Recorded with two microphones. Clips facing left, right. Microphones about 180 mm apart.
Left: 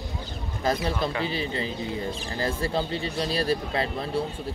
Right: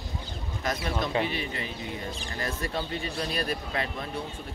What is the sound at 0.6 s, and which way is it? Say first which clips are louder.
Speech: left 4 dB; 30° left (ahead or behind).